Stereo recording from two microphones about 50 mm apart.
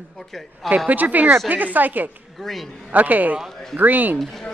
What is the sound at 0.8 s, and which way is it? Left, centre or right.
Speech, right.